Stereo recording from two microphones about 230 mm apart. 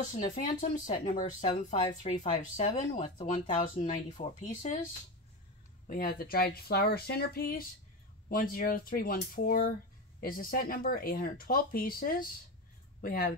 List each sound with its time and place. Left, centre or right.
0.2 s speech: left
3.3 s speech: left
3.6 s speech: left
5.9 s speech: left